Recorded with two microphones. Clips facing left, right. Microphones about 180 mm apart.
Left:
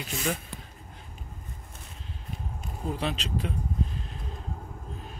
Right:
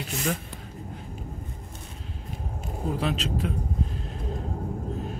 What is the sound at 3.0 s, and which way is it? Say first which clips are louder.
Speech: right 3 dB; centre (ahead or behind).